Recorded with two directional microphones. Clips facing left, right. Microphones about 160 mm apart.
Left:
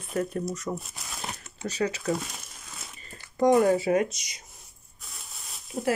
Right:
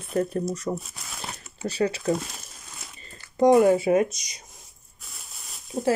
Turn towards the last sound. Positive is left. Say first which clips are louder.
# right 4 dB
turn(degrees=-5)  # may be behind; listen again after turning